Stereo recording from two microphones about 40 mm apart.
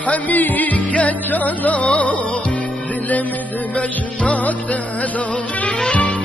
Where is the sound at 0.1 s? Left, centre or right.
Left.